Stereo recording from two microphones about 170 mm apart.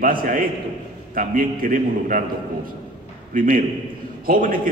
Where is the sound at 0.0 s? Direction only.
55° right (ahead or behind).